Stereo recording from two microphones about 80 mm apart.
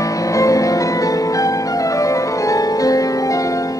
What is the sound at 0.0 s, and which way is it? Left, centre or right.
Music, left.